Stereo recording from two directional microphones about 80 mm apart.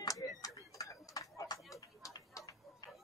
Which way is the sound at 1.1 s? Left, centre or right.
Left.